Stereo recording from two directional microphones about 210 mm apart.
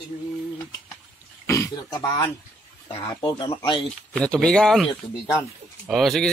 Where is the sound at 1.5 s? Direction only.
15° left (ahead or behind).